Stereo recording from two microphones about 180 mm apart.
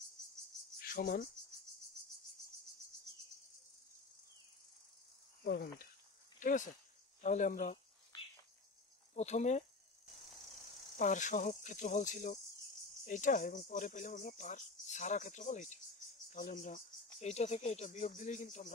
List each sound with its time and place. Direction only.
0.7 s cricket: 55° left (ahead or behind)
5.4 s speech: 60° left (ahead or behind)
6.4 s speech: 45° left (ahead or behind)
9.1 s speech: 40° left (ahead or behind)
11.0 s speech: 45° left (ahead or behind)